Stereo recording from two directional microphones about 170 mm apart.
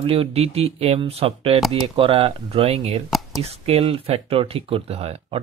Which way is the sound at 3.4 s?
35° right (ahead or behind).